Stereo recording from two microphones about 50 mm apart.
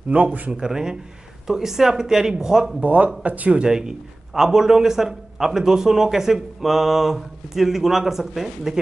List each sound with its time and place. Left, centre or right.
0.1 s speech: right
0.6 s a man's voice: centre
2.8 s speech: right
3.6 s a man's voice: centre